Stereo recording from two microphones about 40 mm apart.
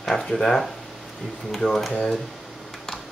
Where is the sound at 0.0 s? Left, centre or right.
Centre.